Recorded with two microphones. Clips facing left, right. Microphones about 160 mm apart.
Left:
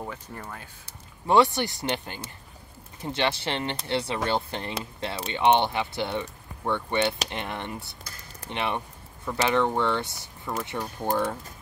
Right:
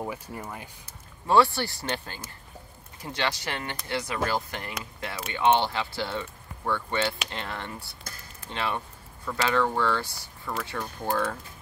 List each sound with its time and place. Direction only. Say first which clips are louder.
0.0 s speech: right 3 dB; 10° right (ahead or behind)
1.2 s speech: left 1 dB; 20° left (ahead or behind)